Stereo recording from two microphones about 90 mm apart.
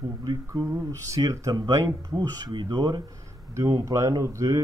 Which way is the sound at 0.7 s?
30° right (ahead or behind).